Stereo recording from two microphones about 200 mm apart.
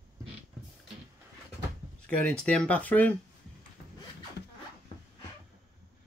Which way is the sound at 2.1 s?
5° left (ahead or behind).